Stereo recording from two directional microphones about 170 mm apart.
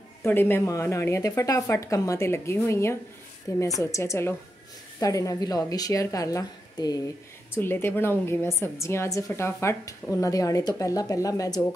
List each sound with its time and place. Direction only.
0.2 s a woman's voice: 15° left (ahead or behind)